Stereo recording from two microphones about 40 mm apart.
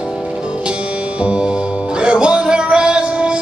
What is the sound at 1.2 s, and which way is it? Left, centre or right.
Music, right.